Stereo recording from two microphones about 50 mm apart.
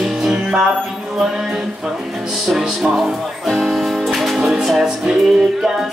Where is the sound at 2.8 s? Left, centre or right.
Centre.